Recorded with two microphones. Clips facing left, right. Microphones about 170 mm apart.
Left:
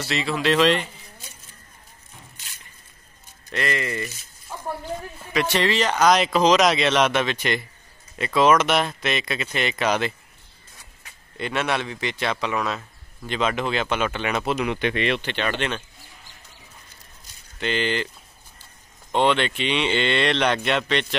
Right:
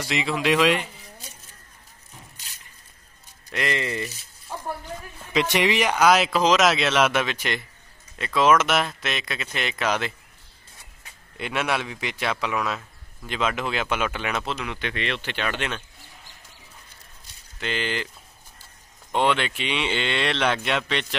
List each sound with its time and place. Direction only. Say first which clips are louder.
0.1 s speech: left 1 dB; 15° right (ahead or behind)
3.5 s speech: left 1 dB; 20° right (ahead or behind)
5.3 s speech: even; 15° right (ahead or behind); by 10.1 s centre (ahead or behind)
11.3 s speech: left 1 dB; 5° right (ahead or behind)
14.4 s speech: left 7 dB; 15° left (ahead or behind)
15.2 s speech: left 3 dB; 5° right (ahead or behind)
17.6 s speech: left 4 dB; 5° right (ahead or behind)
19.1 s speech: left 2 dB; 5° right (ahead or behind)